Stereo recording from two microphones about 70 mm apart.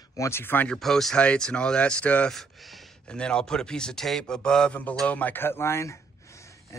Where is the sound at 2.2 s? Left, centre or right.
Centre.